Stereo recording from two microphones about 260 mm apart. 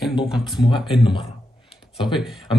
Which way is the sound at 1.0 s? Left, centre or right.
Centre.